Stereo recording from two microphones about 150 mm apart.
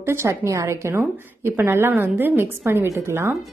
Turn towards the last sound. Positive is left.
turn(degrees=-15)  # may be behind; listen again after turning